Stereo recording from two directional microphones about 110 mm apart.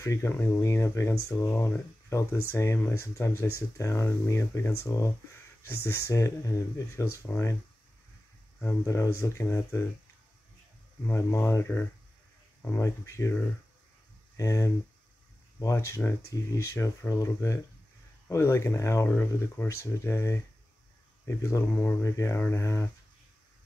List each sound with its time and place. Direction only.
0.0 s speech: 30° left (ahead or behind)
0.3 s speech: 20° left (ahead or behind)
8.6 s speech: 30° left (ahead or behind)
11.1 s speech: 25° left (ahead or behind)
14.3 s speech: 30° left (ahead or behind)